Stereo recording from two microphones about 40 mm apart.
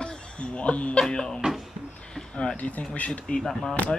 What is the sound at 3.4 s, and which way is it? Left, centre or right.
Speech, centre.